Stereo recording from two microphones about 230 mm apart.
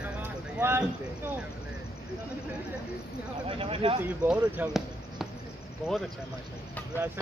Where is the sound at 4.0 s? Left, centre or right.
Centre.